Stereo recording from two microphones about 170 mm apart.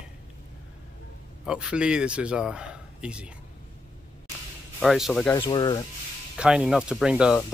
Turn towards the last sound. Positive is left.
turn(degrees=-5)  # may be behind; listen again after turning